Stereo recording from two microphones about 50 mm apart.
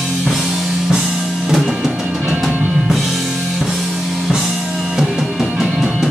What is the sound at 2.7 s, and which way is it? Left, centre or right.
Music, centre.